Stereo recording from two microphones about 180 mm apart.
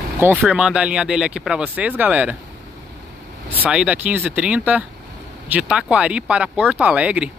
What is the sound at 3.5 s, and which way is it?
Speech, 5° right (ahead or behind).